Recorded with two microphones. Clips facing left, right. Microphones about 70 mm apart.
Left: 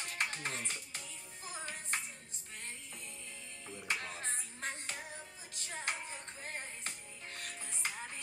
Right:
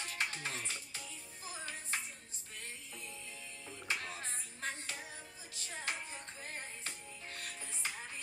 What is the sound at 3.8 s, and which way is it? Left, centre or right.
Music, left.